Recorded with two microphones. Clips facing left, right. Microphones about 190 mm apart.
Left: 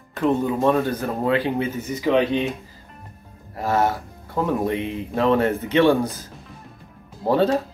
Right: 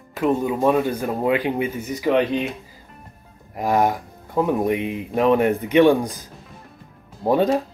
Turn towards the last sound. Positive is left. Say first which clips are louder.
# right 1 dB
turn(degrees=-15)  # may be behind; listen again after turning